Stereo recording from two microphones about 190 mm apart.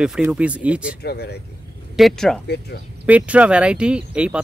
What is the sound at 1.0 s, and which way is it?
Speech, 60° left (ahead or behind).